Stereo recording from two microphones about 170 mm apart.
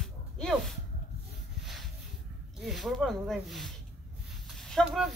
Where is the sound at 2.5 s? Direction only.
Centre (ahead or behind).